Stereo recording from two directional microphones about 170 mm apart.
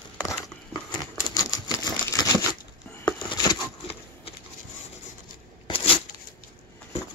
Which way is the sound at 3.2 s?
30° left (ahead or behind).